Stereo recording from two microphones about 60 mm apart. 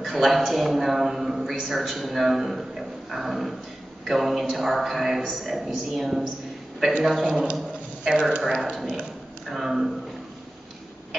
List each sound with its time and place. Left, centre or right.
0.0 s a man's voice: centre
8.0 s speech: centre
8.4 s a man's voice: centre